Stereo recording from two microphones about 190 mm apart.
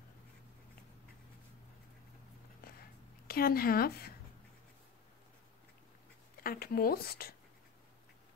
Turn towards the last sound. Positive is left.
turn(degrees=55)  # may be behind; listen again after turning